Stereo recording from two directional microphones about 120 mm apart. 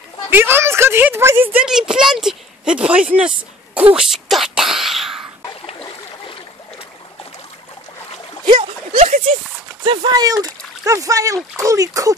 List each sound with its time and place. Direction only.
0.3 s speech: 20° right (ahead or behind)
1.7 s speech: 5° right (ahead or behind)
5.7 s boat: 50° left (ahead or behind)
9.0 s speech: 55° right (ahead or behind)
9.8 s speech: 40° right (ahead or behind)